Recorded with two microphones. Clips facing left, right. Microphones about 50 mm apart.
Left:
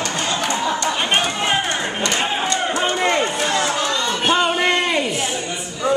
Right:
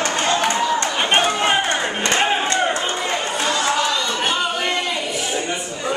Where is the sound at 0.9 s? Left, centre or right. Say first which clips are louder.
Right 2 dB; centre.